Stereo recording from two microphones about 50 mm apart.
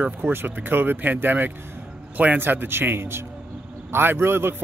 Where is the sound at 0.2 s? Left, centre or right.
Right.